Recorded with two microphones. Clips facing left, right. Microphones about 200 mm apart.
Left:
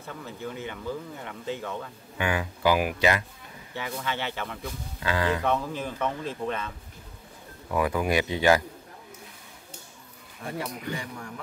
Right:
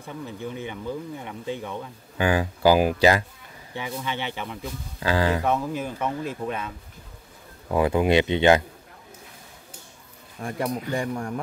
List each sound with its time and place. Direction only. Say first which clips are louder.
0.0 s speech: right 3 dB; 15° right (ahead or behind)
2.1 s speech: right 5 dB; 35° right (ahead or behind)
3.7 s speech: right 2 dB; 15° right (ahead or behind)
5.0 s speech: right 4 dB; 30° right (ahead or behind)
5.4 s speech: right 2 dB; 10° right (ahead or behind)
7.7 s speech: right 5 dB; 25° right (ahead or behind)
10.6 s speech: right 10 dB; 50° right (ahead or behind)